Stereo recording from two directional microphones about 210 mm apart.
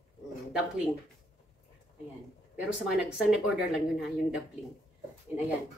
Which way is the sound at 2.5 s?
5° right (ahead or behind).